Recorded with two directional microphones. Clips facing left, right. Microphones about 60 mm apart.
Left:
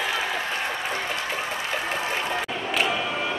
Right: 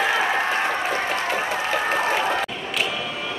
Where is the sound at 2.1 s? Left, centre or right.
Right.